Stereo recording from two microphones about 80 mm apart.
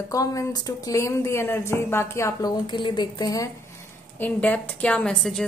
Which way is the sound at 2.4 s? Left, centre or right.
Left.